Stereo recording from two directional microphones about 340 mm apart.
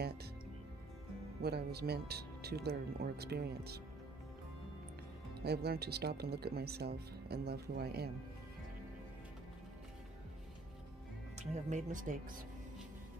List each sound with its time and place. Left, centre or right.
1.4 s speech: right
5.4 s speech: right
11.3 s speech: right